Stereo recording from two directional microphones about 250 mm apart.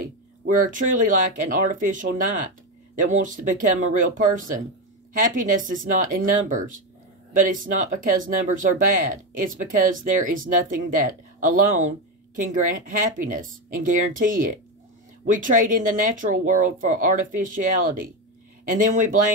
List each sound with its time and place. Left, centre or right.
0.0 s speech: right
9.1 s speech: right